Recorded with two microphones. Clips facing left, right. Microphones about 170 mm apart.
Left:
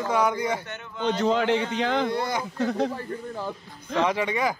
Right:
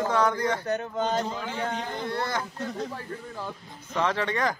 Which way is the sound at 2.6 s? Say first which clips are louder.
Left 8 dB; 75° left (ahead or behind).